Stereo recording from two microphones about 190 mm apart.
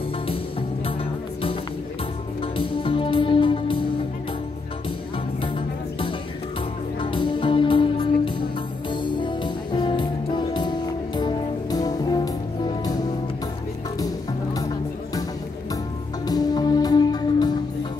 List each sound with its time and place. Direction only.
0.3 s music: 30° left (ahead or behind)
2.4 s music: 25° left (ahead or behind)
7.0 s music: 25° left (ahead or behind)
16.3 s music: 20° left (ahead or behind)